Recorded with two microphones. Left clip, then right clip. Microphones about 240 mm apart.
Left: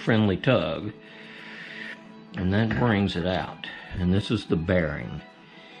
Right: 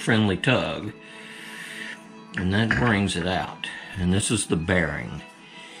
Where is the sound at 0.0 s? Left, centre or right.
Centre.